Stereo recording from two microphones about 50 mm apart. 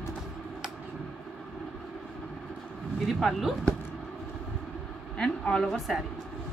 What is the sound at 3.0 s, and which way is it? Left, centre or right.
Speech, centre.